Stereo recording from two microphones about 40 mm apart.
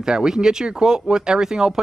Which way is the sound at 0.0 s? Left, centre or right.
Centre.